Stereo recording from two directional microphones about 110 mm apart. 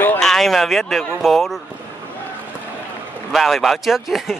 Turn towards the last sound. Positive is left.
turn(degrees=0)  # may be behind; listen again after turning